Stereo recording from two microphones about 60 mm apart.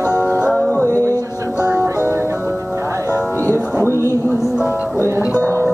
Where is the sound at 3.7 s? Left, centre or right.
Right.